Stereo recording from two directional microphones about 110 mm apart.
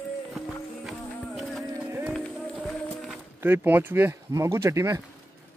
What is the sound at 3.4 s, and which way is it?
Speech, 15° right (ahead or behind).